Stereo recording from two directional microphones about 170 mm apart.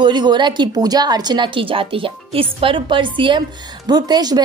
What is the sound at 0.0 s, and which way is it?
A woman's voice, 25° right (ahead or behind).